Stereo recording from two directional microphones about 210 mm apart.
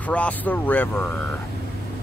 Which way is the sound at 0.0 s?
5° left (ahead or behind).